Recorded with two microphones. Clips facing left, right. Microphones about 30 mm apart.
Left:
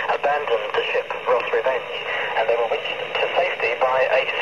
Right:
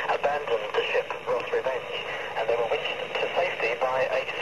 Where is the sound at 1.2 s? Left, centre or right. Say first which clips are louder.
Left 7 dB; left.